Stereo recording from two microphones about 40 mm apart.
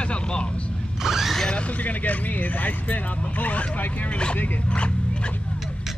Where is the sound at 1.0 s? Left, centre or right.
Centre.